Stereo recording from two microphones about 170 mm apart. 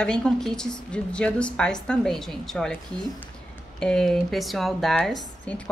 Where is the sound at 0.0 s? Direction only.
5° left (ahead or behind).